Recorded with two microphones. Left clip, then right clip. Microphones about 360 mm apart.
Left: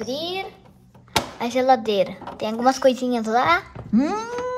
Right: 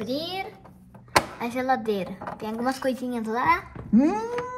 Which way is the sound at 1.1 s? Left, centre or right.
Left.